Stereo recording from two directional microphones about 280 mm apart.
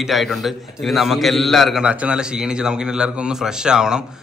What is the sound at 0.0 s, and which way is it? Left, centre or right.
A man's voice, centre.